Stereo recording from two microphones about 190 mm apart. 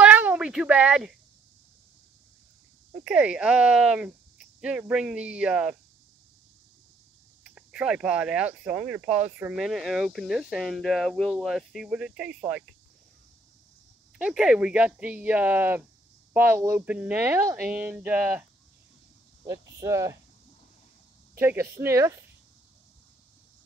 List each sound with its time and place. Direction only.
0.0 s a sound: 5° right (ahead or behind)
2.9 s speech: 5° right (ahead or behind)
7.4 s speech: 5° right (ahead or behind)
14.1 s speech: 5° right (ahead or behind)
21.4 s speech: 10° right (ahead or behind)